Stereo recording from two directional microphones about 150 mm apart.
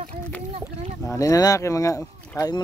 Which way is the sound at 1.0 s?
20° left (ahead or behind).